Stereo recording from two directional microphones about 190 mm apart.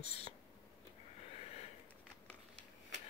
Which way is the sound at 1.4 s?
35° left (ahead or behind).